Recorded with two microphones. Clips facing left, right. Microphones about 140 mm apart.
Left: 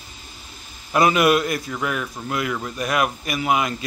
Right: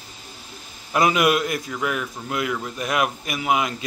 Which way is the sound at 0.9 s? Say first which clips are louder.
Left 2 dB; 15° right (ahead or behind).